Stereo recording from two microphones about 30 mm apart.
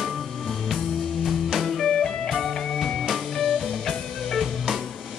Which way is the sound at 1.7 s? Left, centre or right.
Centre.